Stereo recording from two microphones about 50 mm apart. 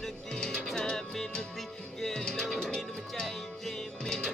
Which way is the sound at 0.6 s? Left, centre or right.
Centre.